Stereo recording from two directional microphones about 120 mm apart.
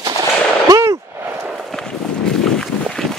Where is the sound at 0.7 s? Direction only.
25° right (ahead or behind).